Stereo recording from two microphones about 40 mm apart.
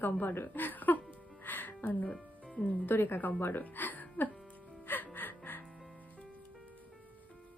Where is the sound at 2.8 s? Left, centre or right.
Left.